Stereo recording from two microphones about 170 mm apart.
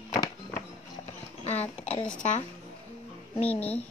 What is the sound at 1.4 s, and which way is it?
Speech, 40° left (ahead or behind).